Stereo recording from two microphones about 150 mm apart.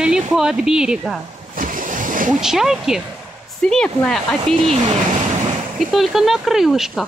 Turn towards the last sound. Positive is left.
turn(degrees=0)  # may be behind; listen again after turning